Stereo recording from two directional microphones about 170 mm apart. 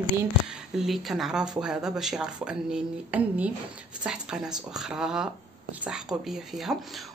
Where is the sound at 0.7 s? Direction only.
Centre (ahead or behind).